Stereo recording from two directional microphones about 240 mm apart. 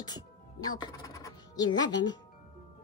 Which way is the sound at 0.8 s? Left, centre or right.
Centre.